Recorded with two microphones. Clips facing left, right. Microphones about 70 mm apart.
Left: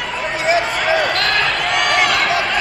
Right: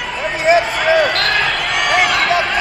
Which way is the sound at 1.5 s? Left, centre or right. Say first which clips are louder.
Right 1 dB; centre.